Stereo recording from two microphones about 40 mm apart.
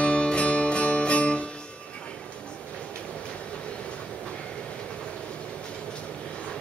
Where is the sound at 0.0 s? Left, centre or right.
Left.